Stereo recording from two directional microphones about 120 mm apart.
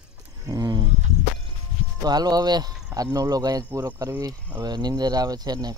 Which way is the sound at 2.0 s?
35° right (ahead or behind).